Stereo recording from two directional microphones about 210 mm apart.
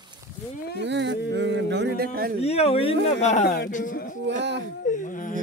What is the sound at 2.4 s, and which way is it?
Speech, 30° left (ahead or behind).